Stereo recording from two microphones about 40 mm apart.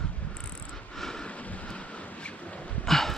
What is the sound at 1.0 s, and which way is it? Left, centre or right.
Vehicle, centre.